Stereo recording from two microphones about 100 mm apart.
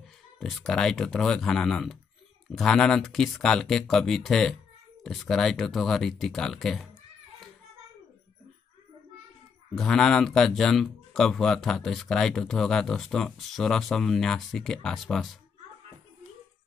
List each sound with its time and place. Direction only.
0.4 s speech: centre (ahead or behind)
9.8 s speech: 5° left (ahead or behind)